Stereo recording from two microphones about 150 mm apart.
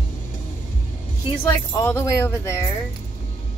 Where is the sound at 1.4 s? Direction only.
20° left (ahead or behind).